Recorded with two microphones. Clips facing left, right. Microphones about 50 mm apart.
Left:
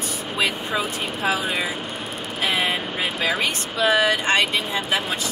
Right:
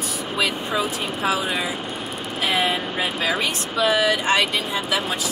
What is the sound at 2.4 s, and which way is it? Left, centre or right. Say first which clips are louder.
Vehicle: right 1 dB; centre.